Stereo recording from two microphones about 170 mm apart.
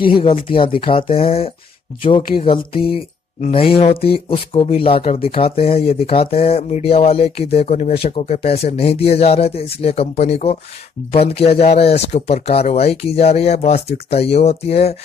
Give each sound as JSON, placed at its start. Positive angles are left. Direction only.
{"t": 0.0, "sound": "speech", "side_deg": 30}